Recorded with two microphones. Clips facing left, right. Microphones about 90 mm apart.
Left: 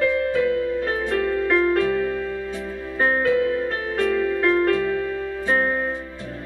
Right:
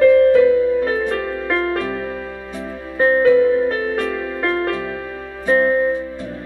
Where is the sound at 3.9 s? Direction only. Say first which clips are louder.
Left 1 dB; 5° right (ahead or behind).